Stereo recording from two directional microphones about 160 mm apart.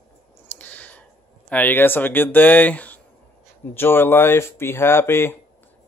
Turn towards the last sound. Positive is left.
turn(degrees=15)  # may be behind; listen again after turning